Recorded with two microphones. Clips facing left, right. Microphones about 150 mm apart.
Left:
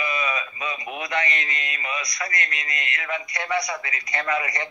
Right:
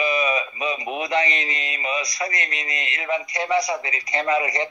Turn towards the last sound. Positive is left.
turn(degrees=-20)  # may be behind; listen again after turning